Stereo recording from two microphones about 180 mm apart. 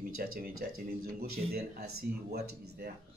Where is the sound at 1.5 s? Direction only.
60° right (ahead or behind).